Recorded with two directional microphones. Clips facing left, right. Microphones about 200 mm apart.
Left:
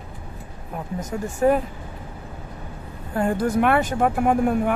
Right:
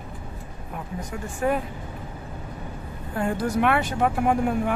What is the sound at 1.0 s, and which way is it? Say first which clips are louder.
Speech: left 6 dB; 45° left (ahead or behind).